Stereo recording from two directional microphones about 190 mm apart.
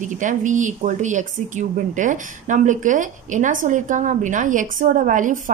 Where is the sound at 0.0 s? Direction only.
40° right (ahead or behind).